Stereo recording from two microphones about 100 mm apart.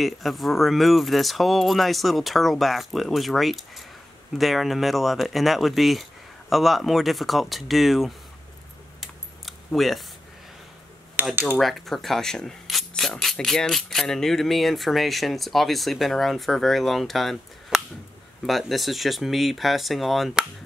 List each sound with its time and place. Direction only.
0.0 s speech: centre (ahead or behind)
9.0 s camera: centre (ahead or behind)
11.2 s speech: 20° right (ahead or behind)
11.6 s speech: centre (ahead or behind)